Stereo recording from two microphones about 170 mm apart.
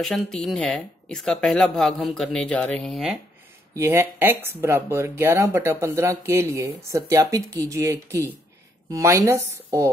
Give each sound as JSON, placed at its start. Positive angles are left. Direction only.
{"t": 0.0, "sound": "speech", "side_deg": 0}
{"t": 3.7, "sound": "speech", "side_deg": -15}